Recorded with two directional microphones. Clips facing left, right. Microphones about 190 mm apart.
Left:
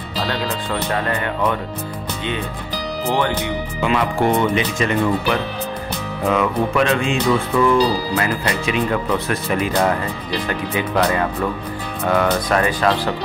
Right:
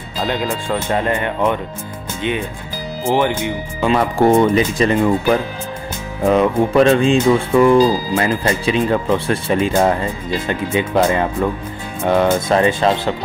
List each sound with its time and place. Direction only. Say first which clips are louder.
0.3 s speech: right 4 dB; 15° right (ahead or behind)
3.1 s speech: right 4 dB; 15° right (ahead or behind)
3.8 s speech: right 4 dB; 30° right (ahead or behind)